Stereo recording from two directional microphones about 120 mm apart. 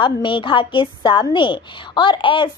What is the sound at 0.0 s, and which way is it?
A woman's voice, 40° left (ahead or behind).